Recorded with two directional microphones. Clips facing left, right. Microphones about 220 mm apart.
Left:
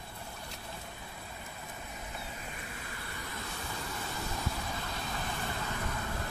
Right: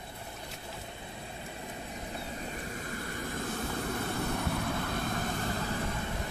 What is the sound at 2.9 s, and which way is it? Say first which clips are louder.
Vehicle: right 7 dB; 45° right (ahead or behind).